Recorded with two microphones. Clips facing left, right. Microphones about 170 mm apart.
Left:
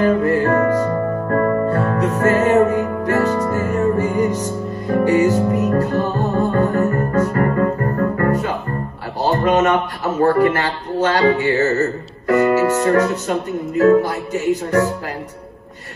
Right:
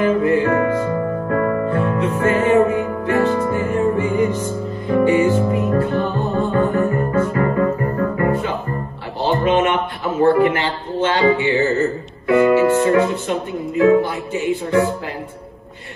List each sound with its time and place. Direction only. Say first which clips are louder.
0.0 s music: even; 40° left (ahead or behind)
9.2 s a sound: left 1 dB; 40° left (ahead or behind)
13.7 s speech: left 1 dB; 40° left (ahead or behind)